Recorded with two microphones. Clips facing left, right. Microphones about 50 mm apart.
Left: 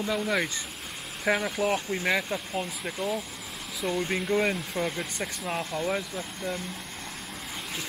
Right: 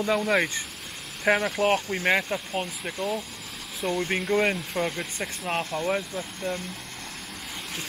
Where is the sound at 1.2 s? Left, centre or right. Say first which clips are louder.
Right 3 dB; right.